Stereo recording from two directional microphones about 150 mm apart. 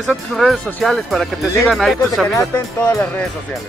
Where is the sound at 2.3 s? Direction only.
20° left (ahead or behind).